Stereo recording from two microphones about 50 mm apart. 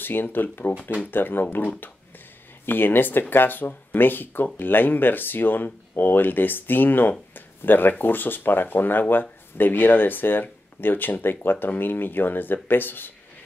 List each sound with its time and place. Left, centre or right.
0.0 s speech: left